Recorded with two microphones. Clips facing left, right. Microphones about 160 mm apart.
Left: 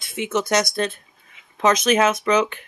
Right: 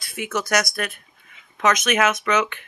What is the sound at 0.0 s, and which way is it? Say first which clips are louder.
Speech: left 3 dB; 20° left (ahead or behind).